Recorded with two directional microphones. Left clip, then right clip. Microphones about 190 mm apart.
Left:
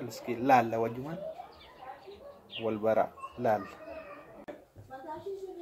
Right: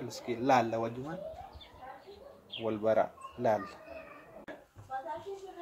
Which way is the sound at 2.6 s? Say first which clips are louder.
Left 1 dB; centre (ahead or behind).